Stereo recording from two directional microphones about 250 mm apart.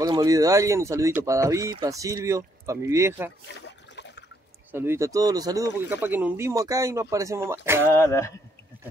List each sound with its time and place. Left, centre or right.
0.0 s speech: centre
3.4 s trickle: left
4.7 s speech: centre
7.9 s speech: centre